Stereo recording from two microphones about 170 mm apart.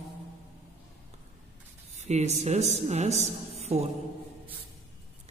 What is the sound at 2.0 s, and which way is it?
A man's voice, 40° right (ahead or behind).